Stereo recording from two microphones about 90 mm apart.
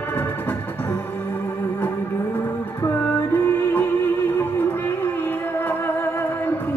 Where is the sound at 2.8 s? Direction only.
25° left (ahead or behind).